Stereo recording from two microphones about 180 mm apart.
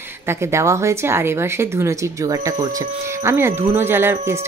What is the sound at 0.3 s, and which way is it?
Speech, 15° right (ahead or behind).